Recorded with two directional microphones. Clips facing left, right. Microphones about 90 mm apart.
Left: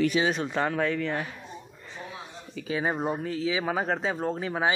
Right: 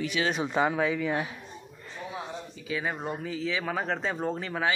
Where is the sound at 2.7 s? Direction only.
30° left (ahead or behind).